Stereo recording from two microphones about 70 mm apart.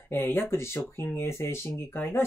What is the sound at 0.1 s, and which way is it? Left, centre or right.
Speech, left.